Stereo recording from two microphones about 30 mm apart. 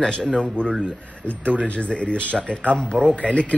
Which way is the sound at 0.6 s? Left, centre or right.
Left.